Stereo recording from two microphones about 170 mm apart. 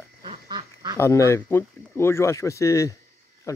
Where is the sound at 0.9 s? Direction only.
15° left (ahead or behind).